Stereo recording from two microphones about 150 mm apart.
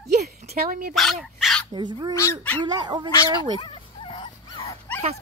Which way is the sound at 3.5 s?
35° left (ahead or behind).